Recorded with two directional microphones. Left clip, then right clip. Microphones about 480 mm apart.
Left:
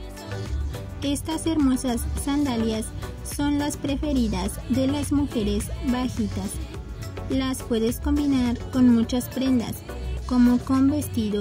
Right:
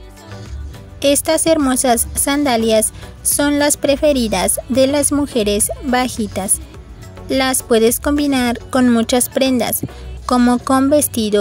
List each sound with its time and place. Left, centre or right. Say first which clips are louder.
0.9 s a woman's voice: right 14 dB; centre
7.3 s a woman's voice: right 12 dB; centre